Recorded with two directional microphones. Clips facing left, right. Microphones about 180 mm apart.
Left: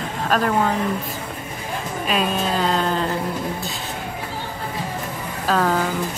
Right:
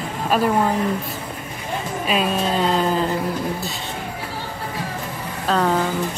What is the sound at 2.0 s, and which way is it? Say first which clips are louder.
Speech: right 1 dB; centre (ahead or behind).